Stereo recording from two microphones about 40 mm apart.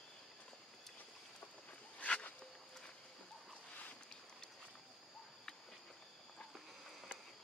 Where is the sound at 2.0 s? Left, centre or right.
Left.